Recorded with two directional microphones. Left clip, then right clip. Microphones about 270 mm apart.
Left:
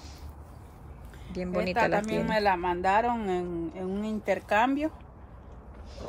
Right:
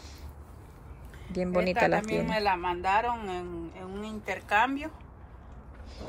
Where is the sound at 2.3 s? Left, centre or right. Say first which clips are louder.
Left 4 dB; left.